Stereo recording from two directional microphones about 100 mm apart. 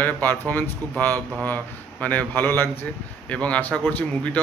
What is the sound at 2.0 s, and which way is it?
A man's voice, 20° left (ahead or behind).